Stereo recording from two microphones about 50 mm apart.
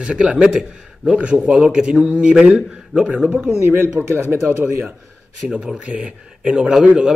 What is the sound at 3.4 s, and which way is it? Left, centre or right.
Speech, right.